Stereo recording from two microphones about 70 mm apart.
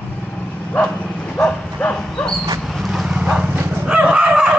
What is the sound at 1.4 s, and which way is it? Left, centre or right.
Livestock, centre.